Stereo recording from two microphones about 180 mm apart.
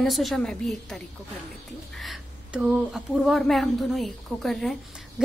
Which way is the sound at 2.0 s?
5° right (ahead or behind).